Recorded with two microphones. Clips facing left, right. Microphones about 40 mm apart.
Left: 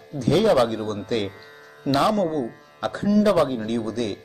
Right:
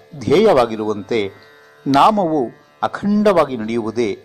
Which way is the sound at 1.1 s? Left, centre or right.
Right.